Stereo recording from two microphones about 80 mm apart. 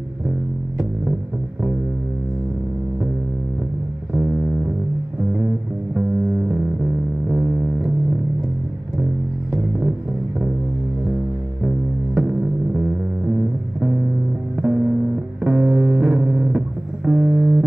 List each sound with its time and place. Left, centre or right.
6.5 s music: centre
11.6 s music: centre
14.6 s music: centre